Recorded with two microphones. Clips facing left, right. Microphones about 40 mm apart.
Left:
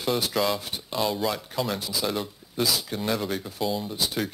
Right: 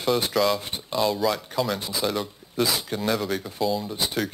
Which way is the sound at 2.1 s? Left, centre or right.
Centre.